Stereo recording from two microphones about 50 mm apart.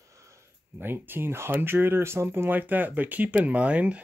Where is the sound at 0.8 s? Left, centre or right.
Right.